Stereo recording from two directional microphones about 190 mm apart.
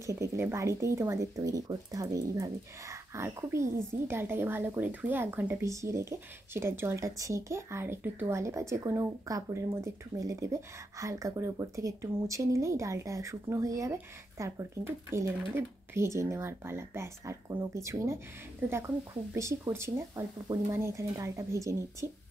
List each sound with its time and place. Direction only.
0.0 s speech: 15° right (ahead or behind)
19.3 s speech: 15° right (ahead or behind)